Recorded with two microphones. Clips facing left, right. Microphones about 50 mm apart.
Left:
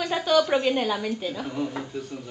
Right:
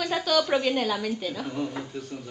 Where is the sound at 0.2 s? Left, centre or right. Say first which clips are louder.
Left 4 dB; centre.